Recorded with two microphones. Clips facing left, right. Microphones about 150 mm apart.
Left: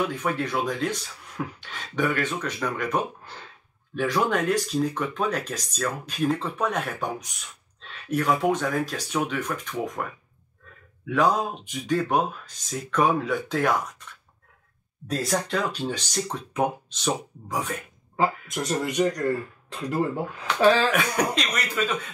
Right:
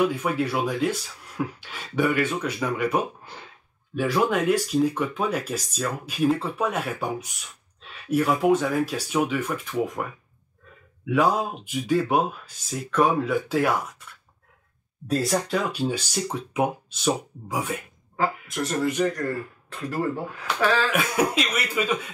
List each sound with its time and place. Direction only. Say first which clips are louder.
0.1 s speech: right 2 dB; 10° right (ahead or behind)
11.1 s speech: right 1 dB; 5° right (ahead or behind)
15.0 s speech: right 3 dB; centre (ahead or behind)
18.1 s speech: left 1 dB; 20° left (ahead or behind)
20.9 s speech: right 1 dB; 5° right (ahead or behind)